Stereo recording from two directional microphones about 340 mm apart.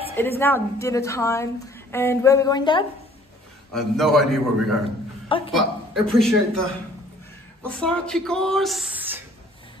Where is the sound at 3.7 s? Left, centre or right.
Centre.